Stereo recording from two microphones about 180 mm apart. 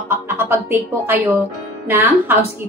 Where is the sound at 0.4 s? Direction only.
10° right (ahead or behind).